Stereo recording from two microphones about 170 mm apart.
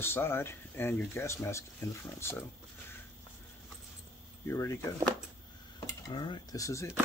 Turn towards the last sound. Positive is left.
turn(degrees=20)  # may be behind; listen again after turning